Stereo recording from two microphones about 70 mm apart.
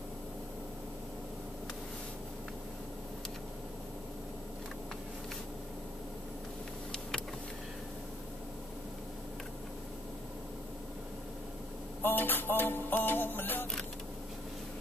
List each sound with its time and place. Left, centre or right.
12.0 s music: left